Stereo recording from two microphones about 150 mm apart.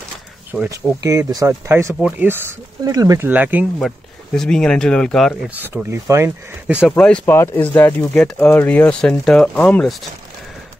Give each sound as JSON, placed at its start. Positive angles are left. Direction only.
{"t": 0.7, "sound": "speech", "side_deg": -25}
{"t": 2.8, "sound": "speech", "side_deg": -25}
{"t": 3.3, "sound": "speech", "side_deg": -10}
{"t": 4.4, "sound": "speech", "side_deg": 5}
{"t": 5.5, "sound": "speech", "side_deg": -10}
{"t": 7.0, "sound": "speech", "side_deg": 5}